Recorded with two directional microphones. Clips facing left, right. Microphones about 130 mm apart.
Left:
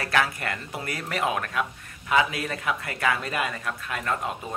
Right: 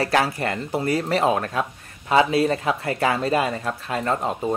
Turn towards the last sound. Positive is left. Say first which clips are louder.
# right 5 dB
turn(degrees=-30)  # may be behind; listen again after turning